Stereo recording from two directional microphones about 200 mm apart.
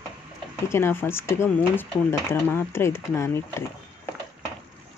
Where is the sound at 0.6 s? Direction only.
10° left (ahead or behind).